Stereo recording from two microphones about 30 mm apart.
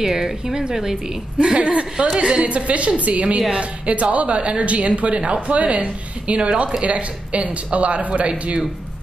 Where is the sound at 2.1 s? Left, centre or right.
Right.